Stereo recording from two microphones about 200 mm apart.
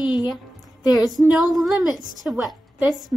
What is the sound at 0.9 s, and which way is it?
Speech, 20° left (ahead or behind).